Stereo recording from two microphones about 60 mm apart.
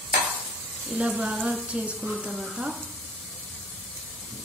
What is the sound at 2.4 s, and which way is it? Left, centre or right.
Speech, centre.